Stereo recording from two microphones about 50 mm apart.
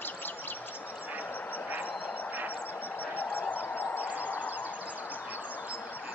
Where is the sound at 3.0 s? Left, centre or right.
Left.